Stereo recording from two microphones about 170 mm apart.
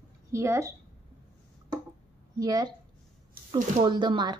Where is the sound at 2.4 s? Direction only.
25° right (ahead or behind).